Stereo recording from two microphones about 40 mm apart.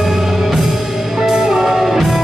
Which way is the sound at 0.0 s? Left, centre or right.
Centre.